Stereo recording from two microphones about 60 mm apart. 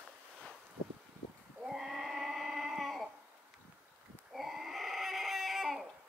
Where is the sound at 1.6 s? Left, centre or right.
Centre.